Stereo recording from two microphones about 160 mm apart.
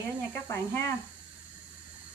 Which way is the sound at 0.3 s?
15° left (ahead or behind).